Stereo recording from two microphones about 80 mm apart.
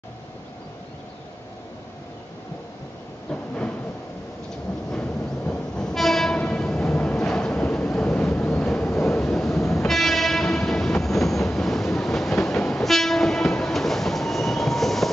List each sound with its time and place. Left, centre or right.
3.3 s train: centre
4.9 s vehicle: centre
5.8 s train: centre
8.3 s vehicle: left
8.5 s vehicle: centre
9.0 s train: centre